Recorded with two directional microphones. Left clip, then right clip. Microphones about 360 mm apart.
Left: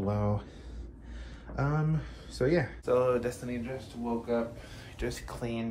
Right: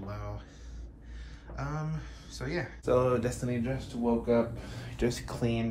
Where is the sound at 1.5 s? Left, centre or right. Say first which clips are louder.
Left 5 dB; centre.